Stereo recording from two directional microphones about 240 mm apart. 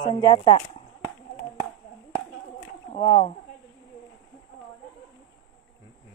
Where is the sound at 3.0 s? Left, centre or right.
Centre.